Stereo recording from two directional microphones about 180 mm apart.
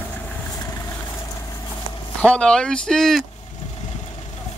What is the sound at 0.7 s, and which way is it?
Vehicle, 20° left (ahead or behind).